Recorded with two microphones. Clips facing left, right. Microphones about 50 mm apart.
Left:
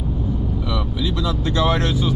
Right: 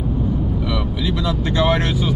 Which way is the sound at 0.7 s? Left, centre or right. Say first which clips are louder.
Right 2 dB; centre.